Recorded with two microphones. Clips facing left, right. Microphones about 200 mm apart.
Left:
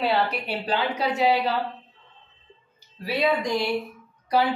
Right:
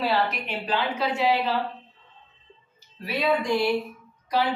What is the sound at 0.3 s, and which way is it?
Speech, 35° left (ahead or behind).